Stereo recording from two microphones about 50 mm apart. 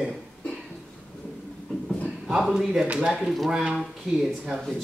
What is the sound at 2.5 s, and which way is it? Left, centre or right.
Speech, centre.